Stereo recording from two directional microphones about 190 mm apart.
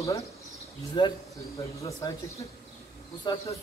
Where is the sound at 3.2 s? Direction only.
25° left (ahead or behind).